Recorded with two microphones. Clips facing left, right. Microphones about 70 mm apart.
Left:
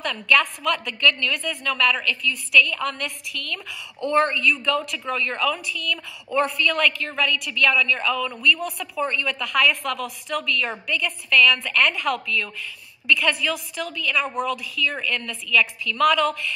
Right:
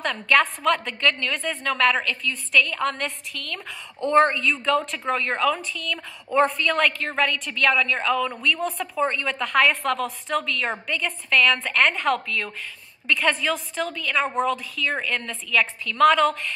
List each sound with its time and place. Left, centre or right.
0.0 s a woman's voice: right